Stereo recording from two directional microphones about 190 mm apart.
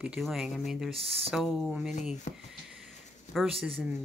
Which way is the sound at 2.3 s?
35° left (ahead or behind).